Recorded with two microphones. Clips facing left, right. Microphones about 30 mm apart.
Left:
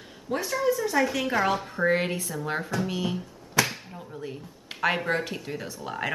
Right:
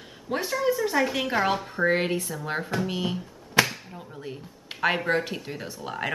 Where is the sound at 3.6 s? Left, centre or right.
Centre.